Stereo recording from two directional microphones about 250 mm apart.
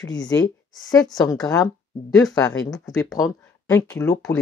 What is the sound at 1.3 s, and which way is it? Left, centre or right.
Speech, centre.